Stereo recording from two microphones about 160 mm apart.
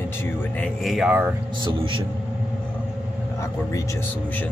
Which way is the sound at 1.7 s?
30° right (ahead or behind).